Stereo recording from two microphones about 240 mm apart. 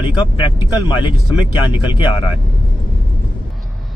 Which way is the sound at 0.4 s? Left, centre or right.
Centre.